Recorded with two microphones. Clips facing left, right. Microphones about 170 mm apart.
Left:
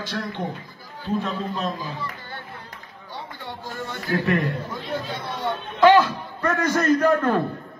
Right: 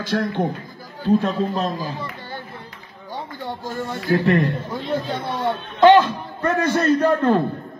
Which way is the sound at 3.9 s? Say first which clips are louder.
Right 5 dB; 30° right (ahead or behind).